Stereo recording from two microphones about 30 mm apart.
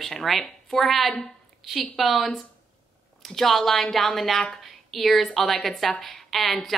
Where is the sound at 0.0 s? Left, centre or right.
Centre.